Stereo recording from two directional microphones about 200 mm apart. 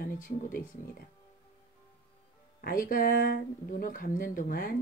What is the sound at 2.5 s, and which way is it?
Speech, 45° left (ahead or behind).